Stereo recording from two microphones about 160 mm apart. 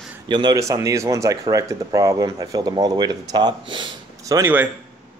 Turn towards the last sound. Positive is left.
turn(degrees=-15)  # may be behind; listen again after turning